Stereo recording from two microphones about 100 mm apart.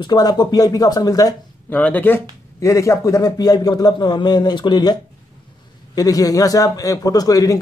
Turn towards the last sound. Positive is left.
turn(degrees=35)  # may be behind; listen again after turning